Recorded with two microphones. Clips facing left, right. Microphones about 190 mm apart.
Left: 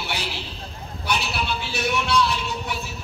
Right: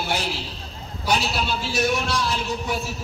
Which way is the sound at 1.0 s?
60° left (ahead or behind).